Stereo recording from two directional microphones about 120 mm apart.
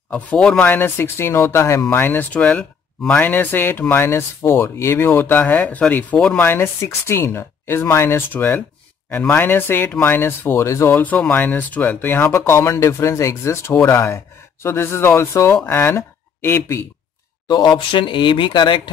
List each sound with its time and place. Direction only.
0.1 s speech: 5° left (ahead or behind); by 16.8 s 20° left (ahead or behind)
17.5 s speech: 40° left (ahead or behind)